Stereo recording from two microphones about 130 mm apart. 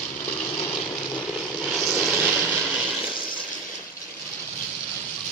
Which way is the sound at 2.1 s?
10° right (ahead or behind).